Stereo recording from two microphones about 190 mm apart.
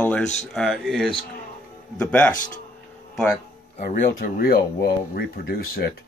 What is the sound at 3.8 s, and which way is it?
Speech, 50° left (ahead or behind).